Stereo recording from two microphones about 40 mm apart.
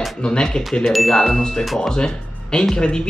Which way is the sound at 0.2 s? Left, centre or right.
Left.